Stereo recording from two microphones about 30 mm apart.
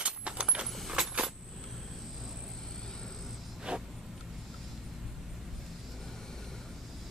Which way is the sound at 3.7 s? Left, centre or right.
Right.